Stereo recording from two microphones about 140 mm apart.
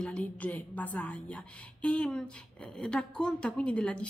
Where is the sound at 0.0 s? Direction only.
10° left (ahead or behind).